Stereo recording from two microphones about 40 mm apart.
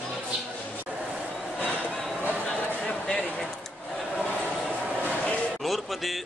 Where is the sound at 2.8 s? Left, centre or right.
Centre.